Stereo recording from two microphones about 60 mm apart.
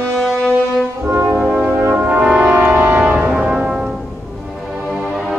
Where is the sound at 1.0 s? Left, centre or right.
Right.